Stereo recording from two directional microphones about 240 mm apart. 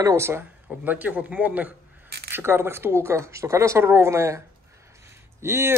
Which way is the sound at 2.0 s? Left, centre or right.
Right.